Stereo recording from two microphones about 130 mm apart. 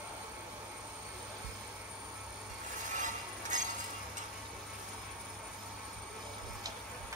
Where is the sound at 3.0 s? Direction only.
75° right (ahead or behind).